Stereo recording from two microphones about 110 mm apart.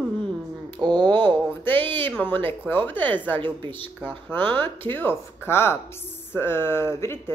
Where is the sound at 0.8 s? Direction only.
40° right (ahead or behind).